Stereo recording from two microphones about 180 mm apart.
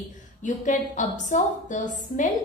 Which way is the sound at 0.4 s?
45° left (ahead or behind).